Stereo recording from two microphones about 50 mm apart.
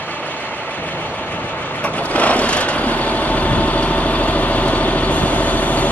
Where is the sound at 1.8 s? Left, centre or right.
Left.